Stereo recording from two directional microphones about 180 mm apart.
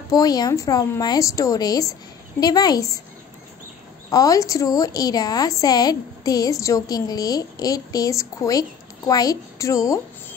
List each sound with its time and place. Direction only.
0.1 s a woman's voice: 20° left (ahead or behind)
4.1 s a woman's voice: 20° left (ahead or behind)